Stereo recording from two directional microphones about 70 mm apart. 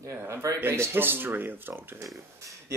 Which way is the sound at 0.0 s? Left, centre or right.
Right.